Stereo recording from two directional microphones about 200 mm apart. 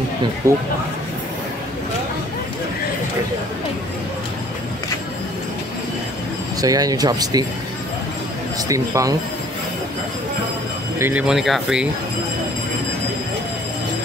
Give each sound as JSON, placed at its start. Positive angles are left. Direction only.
{"t": 0.4, "sound": "speech", "side_deg": -15}
{"t": 6.6, "sound": "speech", "side_deg": -20}
{"t": 8.6, "sound": "speech", "side_deg": -15}
{"t": 11.0, "sound": "speech", "side_deg": -10}